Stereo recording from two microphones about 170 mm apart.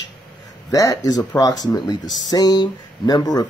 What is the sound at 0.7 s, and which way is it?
Speech, 20° left (ahead or behind).